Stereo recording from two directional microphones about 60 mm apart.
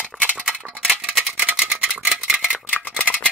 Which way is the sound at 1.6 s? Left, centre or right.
Centre.